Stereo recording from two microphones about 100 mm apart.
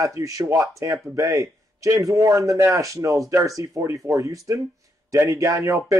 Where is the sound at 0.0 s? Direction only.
35° right (ahead or behind).